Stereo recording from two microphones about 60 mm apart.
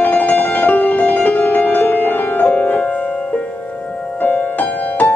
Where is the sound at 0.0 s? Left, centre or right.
Left.